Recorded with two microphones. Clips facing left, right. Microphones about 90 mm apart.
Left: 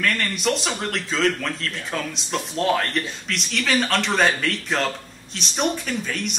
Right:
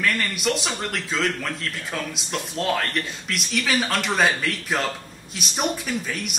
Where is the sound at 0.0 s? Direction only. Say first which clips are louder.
Left 1 dB; 5° right (ahead or behind).